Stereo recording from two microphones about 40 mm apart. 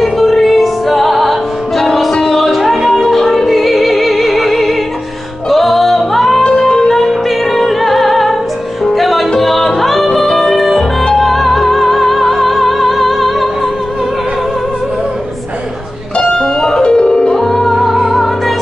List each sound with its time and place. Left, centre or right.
0.0 s music: centre
6.4 s music: centre
7.0 s music: centre
11.1 s music: centre
16.2 s music: centre
16.8 s music: left
17.3 s music: centre
17.7 s music: centre